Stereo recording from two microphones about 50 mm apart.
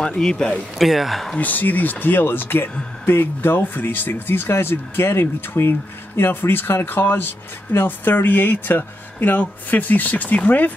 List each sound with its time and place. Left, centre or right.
0.0 s speech: centre
0.5 s speech: centre
1.4 s speech: left